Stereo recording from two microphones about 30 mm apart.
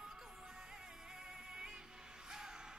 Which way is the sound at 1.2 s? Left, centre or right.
Right.